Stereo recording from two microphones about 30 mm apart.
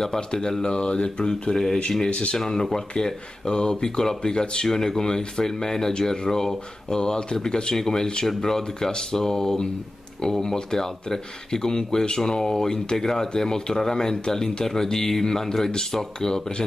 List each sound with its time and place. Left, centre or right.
0.0 s speech: left
1.5 s speech: centre
2.0 s speech: left
2.3 s speech: centre